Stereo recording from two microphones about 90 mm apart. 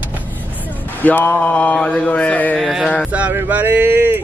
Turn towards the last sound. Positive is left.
turn(degrees=-20)  # may be behind; listen again after turning